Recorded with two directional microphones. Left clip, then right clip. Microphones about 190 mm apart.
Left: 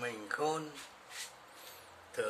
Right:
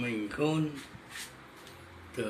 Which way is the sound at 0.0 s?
25° left (ahead or behind).